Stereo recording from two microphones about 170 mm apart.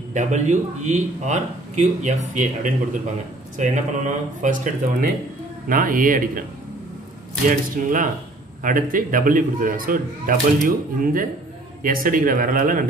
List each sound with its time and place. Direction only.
0.1 s a man's voice: 45° right (ahead or behind)
7.4 s a man's voice: 50° right (ahead or behind)